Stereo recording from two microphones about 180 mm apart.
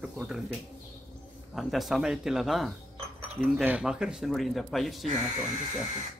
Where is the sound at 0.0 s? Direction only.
5° right (ahead or behind).